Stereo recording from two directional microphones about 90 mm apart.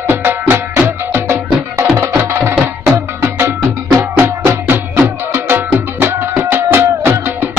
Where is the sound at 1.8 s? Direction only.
20° right (ahead or behind).